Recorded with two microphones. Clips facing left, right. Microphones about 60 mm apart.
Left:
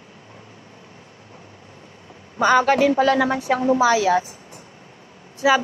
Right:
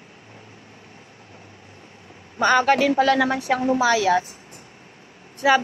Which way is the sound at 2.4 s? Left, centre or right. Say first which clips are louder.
Left 2 dB; centre.